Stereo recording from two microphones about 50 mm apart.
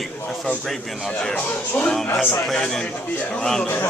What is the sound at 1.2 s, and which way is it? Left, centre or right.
Speech, left.